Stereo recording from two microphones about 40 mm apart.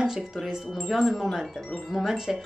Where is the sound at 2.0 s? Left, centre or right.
Centre.